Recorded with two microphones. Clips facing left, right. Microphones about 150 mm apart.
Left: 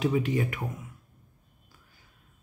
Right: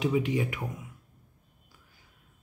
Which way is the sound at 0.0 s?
15° right (ahead or behind).